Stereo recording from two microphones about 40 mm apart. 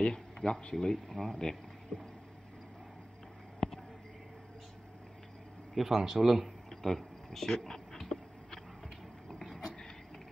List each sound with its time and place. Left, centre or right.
0.0 s speech: centre
0.9 s speech: centre
1.9 s boat: centre
3.5 s a sound: centre
5.8 s speech: centre
6.7 s a sound: centre